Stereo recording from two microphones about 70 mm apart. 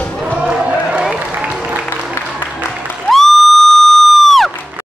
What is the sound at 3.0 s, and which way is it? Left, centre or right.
Crowd, centre.